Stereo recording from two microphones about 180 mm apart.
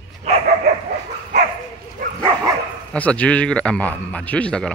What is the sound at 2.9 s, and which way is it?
A man's voice, 5° left (ahead or behind).